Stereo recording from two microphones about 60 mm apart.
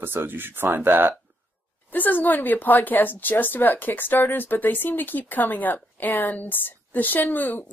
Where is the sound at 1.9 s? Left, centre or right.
Left.